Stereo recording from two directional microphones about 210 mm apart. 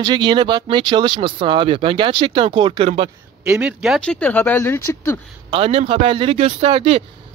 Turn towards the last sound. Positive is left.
turn(degrees=-25)  # may be behind; listen again after turning